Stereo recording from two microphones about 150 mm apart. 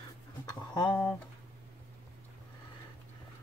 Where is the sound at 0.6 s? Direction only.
30° left (ahead or behind).